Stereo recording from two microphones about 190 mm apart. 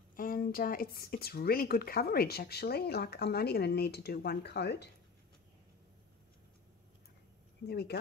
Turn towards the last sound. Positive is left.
turn(degrees=60)  # may be behind; listen again after turning